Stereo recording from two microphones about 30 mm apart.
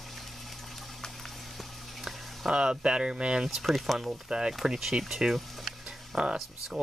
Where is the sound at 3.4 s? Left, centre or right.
Centre.